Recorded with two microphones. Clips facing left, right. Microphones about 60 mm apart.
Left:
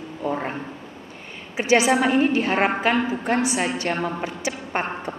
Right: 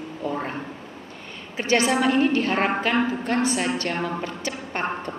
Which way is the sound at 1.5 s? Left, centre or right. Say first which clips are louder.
Left 3 dB; centre.